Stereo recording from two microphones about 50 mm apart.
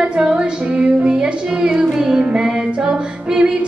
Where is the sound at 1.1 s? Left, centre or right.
Centre.